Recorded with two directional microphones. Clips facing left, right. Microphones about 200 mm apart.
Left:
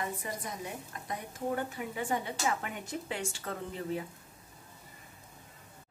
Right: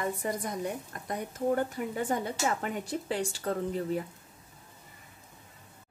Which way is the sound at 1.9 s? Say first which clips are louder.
Right 3 dB; 40° right (ahead or behind).